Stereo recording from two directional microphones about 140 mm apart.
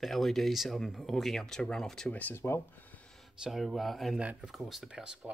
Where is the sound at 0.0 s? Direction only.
Centre (ahead or behind); by 2.6 s 20° left (ahead or behind).